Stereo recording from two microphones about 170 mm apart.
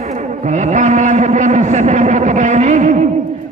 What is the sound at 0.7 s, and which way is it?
Speech, 45° right (ahead or behind).